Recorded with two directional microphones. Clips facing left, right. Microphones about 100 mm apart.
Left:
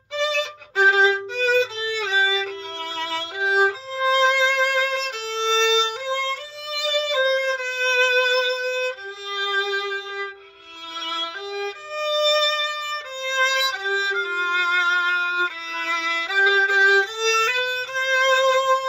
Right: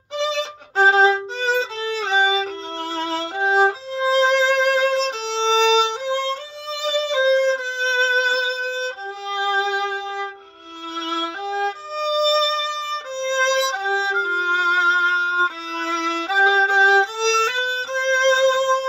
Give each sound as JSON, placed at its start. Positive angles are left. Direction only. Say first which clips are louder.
{"t": 0.1, "sound": "violin", "louder": "right 1 dB", "side_deg": -25}
{"t": 5.9, "sound": "music", "louder": "right 3 dB", "side_deg": -30}
{"t": 11.1, "sound": "violin", "louder": "right 5 dB", "side_deg": -30}
{"t": 11.9, "sound": "music", "louder": "even", "side_deg": -25}
{"t": 16.0, "sound": "violin", "louder": "right 4 dB", "side_deg": -40}